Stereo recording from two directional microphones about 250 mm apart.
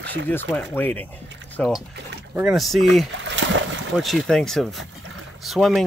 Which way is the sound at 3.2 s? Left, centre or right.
Right.